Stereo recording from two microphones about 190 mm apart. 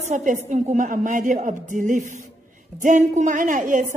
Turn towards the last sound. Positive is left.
turn(degrees=-40)  # may be behind; listen again after turning